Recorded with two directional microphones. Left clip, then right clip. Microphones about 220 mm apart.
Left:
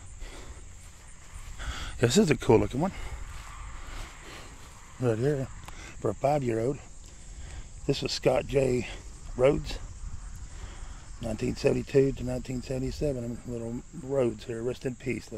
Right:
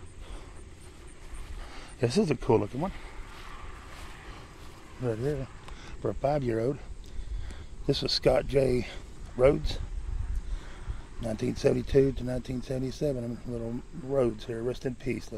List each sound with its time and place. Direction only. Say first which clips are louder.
1.6 s speech: left 3 dB; 30° left (ahead or behind)
3.3 s vehicle: right 1 dB; 55° right (ahead or behind)
5.0 s speech: left 4 dB; 45° left (ahead or behind)
5.7 s speech: left 1 dB; 25° left (ahead or behind); by 6.8 s 10° left (ahead or behind)
7.8 s speech: right 1 dB; 5° left (ahead or behind)
11.1 s speech: even; 5° left (ahead or behind)